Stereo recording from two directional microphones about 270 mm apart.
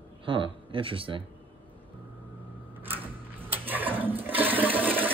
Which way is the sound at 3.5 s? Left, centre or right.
Centre.